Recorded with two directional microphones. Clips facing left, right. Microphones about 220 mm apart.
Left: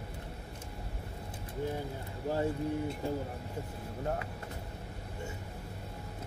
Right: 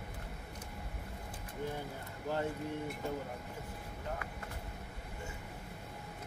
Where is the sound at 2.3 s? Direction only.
30° left (ahead or behind).